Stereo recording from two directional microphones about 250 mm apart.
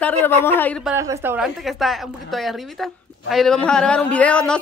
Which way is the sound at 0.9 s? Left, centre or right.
Centre.